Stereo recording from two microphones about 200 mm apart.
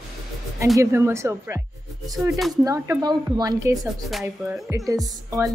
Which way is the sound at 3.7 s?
Centre (ahead or behind).